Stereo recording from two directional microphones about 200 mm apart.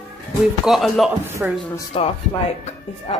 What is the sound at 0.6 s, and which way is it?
Speech, centre (ahead or behind).